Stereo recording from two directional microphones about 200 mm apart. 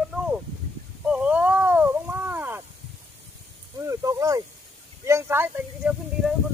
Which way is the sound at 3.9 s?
15° right (ahead or behind).